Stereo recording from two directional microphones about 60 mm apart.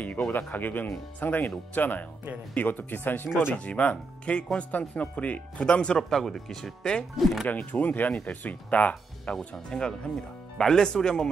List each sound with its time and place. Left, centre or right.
0.3 s speech: left
3.5 s speech: left
7.2 s speech: centre
7.4 s speech: left; by 11.2 s centre